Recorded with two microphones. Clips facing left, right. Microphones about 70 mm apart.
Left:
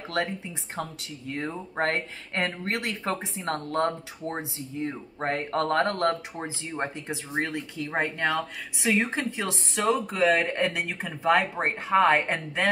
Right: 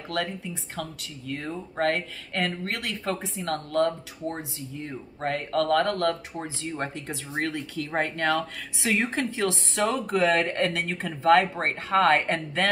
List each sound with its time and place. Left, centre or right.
0.7 s speech: left